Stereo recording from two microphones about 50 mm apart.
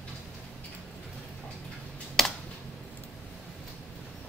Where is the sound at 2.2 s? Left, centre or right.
Centre.